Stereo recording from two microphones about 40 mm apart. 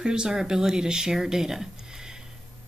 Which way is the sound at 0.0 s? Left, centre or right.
Right.